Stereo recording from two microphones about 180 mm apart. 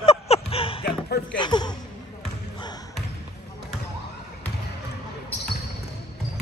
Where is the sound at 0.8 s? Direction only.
60° left (ahead or behind).